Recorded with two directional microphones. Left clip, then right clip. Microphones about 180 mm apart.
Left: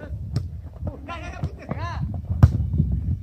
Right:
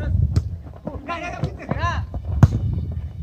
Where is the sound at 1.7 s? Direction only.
30° right (ahead or behind).